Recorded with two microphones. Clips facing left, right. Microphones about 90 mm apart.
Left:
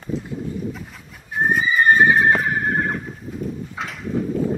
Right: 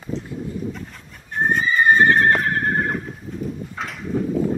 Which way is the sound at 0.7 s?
5° left (ahead or behind).